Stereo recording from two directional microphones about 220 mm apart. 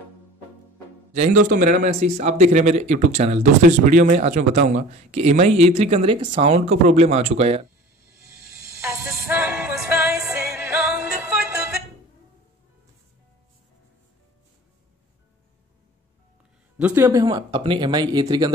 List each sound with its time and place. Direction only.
1.1 s speech: 35° right (ahead or behind)
8.8 s music: 10° right (ahead or behind)
16.7 s speech: 10° right (ahead or behind)